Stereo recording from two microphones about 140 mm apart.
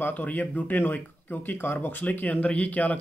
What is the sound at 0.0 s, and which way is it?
Speech, 10° left (ahead or behind).